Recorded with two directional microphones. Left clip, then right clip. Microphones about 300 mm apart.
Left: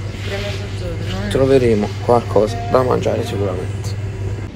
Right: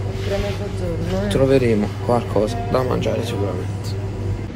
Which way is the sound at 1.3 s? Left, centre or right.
Centre.